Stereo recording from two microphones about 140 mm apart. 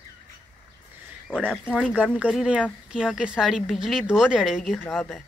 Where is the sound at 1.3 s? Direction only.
5° left (ahead or behind).